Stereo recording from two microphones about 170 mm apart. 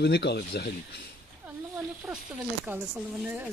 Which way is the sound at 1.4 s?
5° right (ahead or behind).